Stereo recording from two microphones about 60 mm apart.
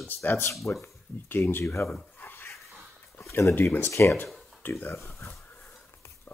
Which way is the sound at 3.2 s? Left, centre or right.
Left.